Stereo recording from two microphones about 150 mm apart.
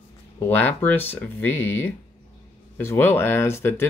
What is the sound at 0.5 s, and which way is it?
Speech, 10° left (ahead or behind).